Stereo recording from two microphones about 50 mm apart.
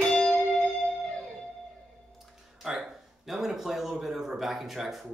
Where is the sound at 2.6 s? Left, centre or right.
Centre.